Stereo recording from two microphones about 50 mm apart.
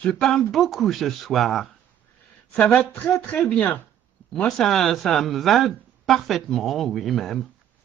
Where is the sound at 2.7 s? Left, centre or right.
Left.